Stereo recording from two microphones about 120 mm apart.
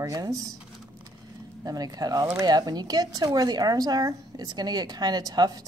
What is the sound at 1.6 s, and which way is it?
Speech, 30° right (ahead or behind).